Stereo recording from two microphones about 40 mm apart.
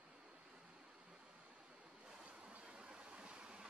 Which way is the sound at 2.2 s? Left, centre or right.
Right.